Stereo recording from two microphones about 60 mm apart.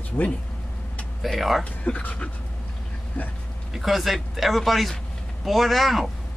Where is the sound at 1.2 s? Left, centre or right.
Centre.